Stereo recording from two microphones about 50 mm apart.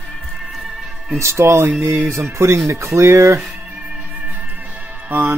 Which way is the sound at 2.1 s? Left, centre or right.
Right.